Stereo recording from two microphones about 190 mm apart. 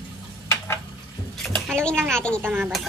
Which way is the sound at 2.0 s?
5° left (ahead or behind).